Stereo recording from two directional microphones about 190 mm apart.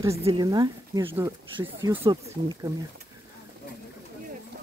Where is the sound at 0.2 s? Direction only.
25° right (ahead or behind).